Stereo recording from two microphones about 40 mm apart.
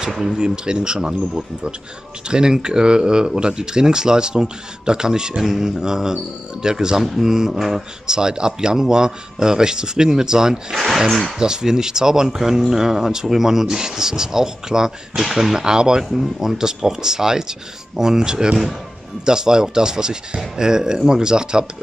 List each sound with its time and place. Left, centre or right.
0.3 s speech: right
5.4 s mantra: centre
5.8 s speech: centre
8.1 s speech: centre
16.1 s speech: centre